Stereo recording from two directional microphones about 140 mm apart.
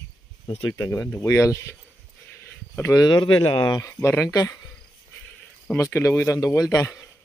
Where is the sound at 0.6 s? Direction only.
25° left (ahead or behind).